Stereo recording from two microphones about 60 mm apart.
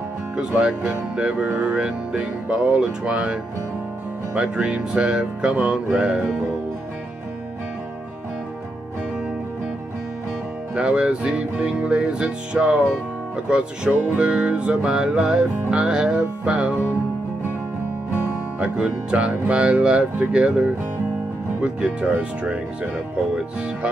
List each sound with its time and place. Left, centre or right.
0.4 s music: centre
4.3 s speech: centre
10.7 s speech: centre
13.5 s music: centre
18.1 s music: right
18.8 s speech: centre